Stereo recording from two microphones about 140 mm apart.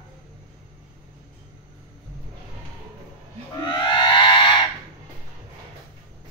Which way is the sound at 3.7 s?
35° left (ahead or behind).